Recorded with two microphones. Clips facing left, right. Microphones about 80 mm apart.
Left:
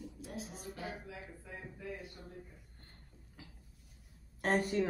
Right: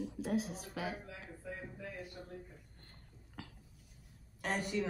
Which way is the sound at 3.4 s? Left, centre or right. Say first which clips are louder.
Right 6 dB; right.